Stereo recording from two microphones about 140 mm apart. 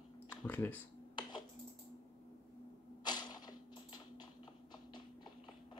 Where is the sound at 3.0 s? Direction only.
30° left (ahead or behind).